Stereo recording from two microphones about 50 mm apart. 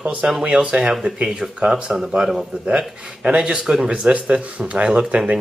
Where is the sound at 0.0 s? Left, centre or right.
Right.